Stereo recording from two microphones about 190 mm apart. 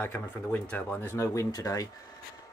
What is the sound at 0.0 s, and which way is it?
Speech, 10° left (ahead or behind).